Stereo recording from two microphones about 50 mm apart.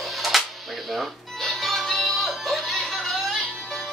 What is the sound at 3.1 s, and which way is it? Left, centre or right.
Music, centre.